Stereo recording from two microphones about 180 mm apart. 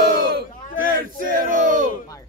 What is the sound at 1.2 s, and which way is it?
Battle cry, 50° right (ahead or behind).